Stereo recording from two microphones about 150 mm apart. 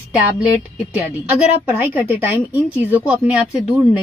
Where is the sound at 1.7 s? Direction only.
10° right (ahead or behind).